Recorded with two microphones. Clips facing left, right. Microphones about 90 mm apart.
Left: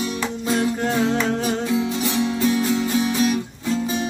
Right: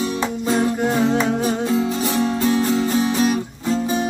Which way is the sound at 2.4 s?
35° right (ahead or behind).